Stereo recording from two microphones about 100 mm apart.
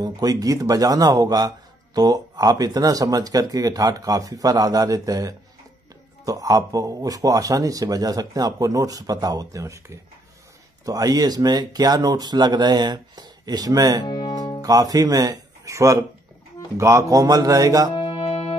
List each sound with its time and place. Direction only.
0.0 s speech: 40° right (ahead or behind)
14.0 s music: 45° left (ahead or behind)
14.6 s speech: 40° right (ahead or behind)
17.9 s music: 60° left (ahead or behind); by 18.6 s 80° left